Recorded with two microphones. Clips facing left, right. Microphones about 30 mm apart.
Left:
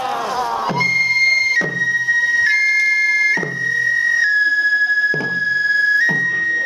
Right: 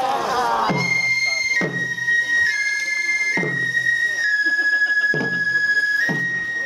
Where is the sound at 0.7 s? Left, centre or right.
Centre.